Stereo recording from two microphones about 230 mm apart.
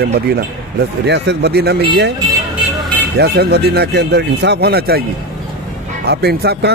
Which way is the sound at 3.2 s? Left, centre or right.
Right.